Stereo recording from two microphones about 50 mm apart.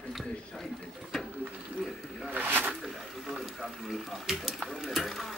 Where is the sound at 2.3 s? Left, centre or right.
Right.